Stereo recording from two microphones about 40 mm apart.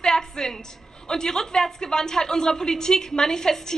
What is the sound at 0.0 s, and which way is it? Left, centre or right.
A woman's voice, centre.